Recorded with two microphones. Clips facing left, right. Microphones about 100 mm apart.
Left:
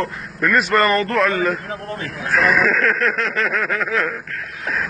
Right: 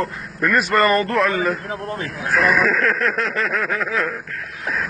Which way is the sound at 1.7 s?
25° right (ahead or behind).